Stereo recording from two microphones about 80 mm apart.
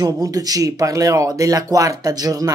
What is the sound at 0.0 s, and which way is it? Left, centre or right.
Speech, right.